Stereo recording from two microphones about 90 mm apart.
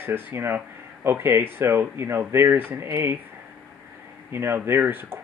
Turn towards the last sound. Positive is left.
turn(degrees=-25)  # may be behind; listen again after turning